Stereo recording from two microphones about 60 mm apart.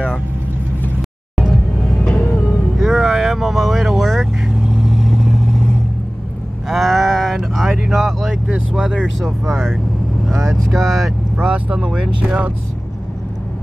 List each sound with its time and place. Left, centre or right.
2.0 s music: centre
2.8 s vehicle: centre
6.7 s livestock: centre
7.8 s vehicle: centre
8.8 s speech: centre
11.4 s speech: centre